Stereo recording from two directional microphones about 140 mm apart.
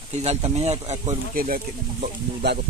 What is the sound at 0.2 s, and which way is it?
Speech, 50° right (ahead or behind).